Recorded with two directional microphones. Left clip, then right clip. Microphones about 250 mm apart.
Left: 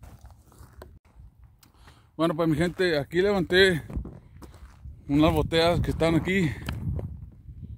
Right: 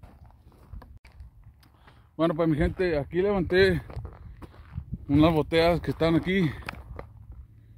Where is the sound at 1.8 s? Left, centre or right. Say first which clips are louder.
Even; centre.